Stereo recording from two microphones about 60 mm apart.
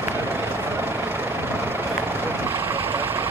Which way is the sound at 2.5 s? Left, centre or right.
Right.